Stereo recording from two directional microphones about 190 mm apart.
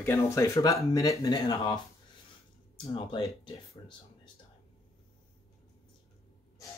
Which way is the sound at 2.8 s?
25° left (ahead or behind).